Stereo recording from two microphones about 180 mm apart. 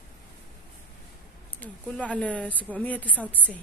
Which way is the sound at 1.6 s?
10° left (ahead or behind).